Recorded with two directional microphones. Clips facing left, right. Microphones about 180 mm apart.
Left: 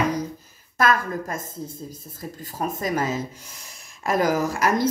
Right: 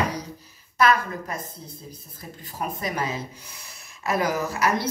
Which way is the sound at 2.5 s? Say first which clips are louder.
Left 4 dB; 45° left (ahead or behind).